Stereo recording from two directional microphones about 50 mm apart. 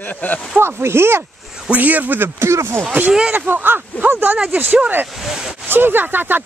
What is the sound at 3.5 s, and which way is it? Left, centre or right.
Speech, right.